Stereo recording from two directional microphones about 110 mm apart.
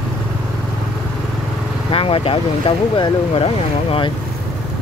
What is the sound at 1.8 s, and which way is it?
Speech, 55° left (ahead or behind).